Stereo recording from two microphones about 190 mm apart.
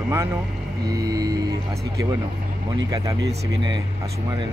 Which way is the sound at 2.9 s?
20° right (ahead or behind).